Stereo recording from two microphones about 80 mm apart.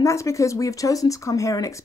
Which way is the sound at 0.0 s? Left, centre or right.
Left.